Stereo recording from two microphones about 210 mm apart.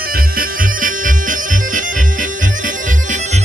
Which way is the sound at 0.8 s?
40° right (ahead or behind).